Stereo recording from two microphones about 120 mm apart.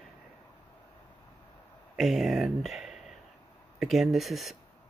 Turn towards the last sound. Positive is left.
turn(degrees=0)  # may be behind; listen again after turning